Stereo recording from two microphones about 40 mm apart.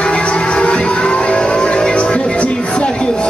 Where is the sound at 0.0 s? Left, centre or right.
Left.